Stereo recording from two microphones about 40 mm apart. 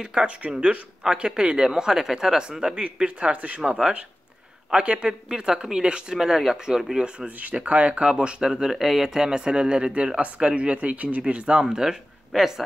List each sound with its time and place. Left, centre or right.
0.0 s speech: centre
2.8 s speech: right
6.1 s speech: centre
7.2 s speech: right
11.5 s speech: centre
12.3 s speech: centre